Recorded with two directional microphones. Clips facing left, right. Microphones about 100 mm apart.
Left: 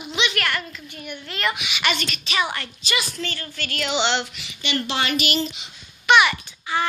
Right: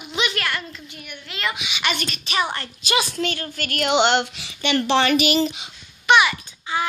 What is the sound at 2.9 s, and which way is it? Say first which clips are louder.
Speech: right 5 dB; 60° right (ahead or behind).